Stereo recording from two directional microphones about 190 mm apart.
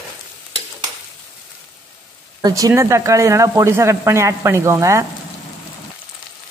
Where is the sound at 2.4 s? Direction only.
20° right (ahead or behind).